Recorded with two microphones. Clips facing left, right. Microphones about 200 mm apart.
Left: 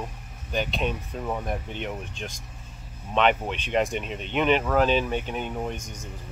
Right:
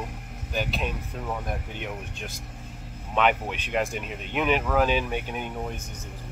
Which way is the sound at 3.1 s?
10° right (ahead or behind).